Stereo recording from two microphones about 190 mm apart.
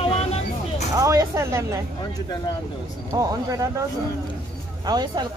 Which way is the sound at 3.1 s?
20° right (ahead or behind).